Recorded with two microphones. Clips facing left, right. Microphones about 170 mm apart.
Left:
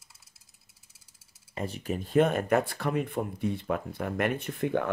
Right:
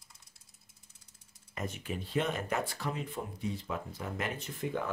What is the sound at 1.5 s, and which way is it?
Speech, 35° left (ahead or behind).